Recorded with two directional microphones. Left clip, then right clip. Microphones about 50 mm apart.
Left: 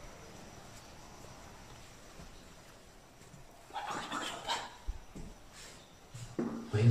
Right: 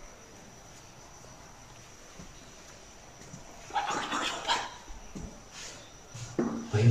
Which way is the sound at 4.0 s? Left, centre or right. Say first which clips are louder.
Right 7 dB; left.